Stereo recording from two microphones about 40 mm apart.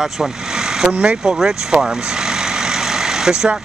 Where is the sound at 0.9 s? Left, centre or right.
Right.